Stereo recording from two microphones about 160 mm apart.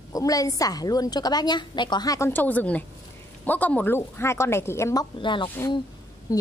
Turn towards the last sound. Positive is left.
turn(degrees=20)  # may be behind; listen again after turning